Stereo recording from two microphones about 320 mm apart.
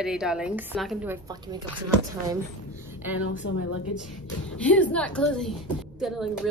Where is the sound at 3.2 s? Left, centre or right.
Left.